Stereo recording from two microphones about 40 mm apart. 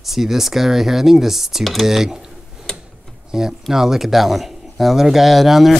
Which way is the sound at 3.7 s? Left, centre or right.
Centre.